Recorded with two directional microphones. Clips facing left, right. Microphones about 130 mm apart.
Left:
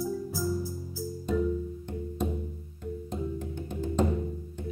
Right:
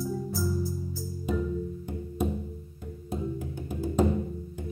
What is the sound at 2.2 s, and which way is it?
Music, 5° right (ahead or behind).